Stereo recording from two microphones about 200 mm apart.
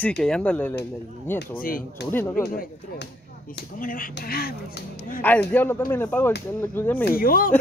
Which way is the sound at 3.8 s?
45° left (ahead or behind).